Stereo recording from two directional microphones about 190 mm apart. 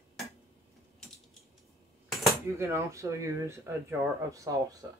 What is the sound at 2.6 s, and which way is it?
Speech, 15° right (ahead or behind).